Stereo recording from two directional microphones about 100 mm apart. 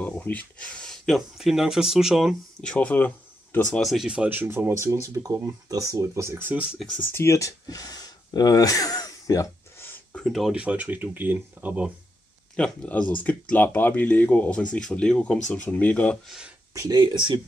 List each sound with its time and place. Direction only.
0.0 s speech: 15° left (ahead or behind); by 2.3 s 5° right (ahead or behind)
2.6 s speech: 15° left (ahead or behind)
3.8 s speech: centre (ahead or behind)
4.1 s speech: 15° right (ahead or behind)
7.1 s speech: 25° left (ahead or behind)
9.8 s a sound: 20° left (ahead or behind)
10.1 s speech: centre (ahead or behind)
10.5 s speech: 10° right (ahead or behind)
12.5 s speech: 10° left (ahead or behind)
16.3 s speech: 5° right (ahead or behind)
16.7 s speech: 35° right (ahead or behind)
17.0 s speech: 50° right (ahead or behind)